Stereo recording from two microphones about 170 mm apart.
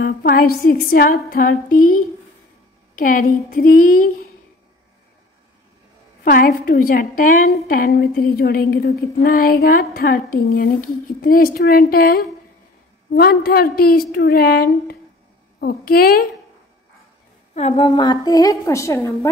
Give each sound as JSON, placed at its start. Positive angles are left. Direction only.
{"t": 0.0, "sound": "speech", "side_deg": 60}
{"t": 3.0, "sound": "speech", "side_deg": 55}
{"t": 6.2, "sound": "speech", "side_deg": 60}
{"t": 7.6, "sound": "speech", "side_deg": 65}
{"t": 17.6, "sound": "a woman's voice", "side_deg": 35}